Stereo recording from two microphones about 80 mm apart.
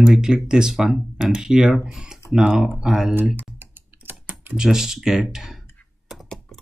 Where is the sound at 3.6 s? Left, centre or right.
Right.